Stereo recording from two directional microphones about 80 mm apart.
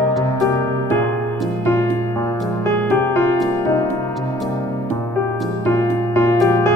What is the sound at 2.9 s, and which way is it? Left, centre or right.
Music, left.